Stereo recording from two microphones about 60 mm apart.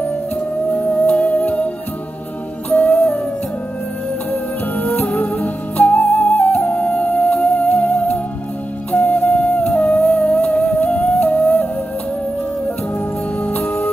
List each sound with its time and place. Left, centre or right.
1.0 s music: left
2.7 s music: left
4.3 s music: left
8.9 s flute: left
10.0 s humming: left
10.4 s music: left
13.4 s music: left